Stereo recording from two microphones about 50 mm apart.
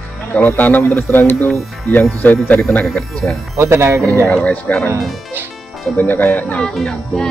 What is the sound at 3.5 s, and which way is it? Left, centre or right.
Speech, right.